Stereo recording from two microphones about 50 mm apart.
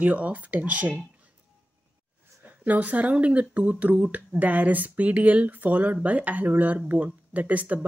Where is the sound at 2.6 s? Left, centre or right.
Right.